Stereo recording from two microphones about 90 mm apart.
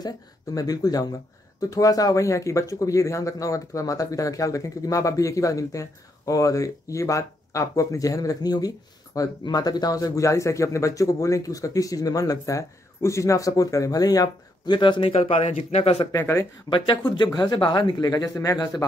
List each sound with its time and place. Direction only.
0.6 s speech: 45° left (ahead or behind)
14.8 s speech: 70° left (ahead or behind)
16.1 s speech: 35° left (ahead or behind)
16.6 s speech: 60° left (ahead or behind); by 18.7 s 40° left (ahead or behind)